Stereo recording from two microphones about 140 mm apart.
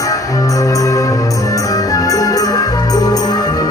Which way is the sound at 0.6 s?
25° left (ahead or behind).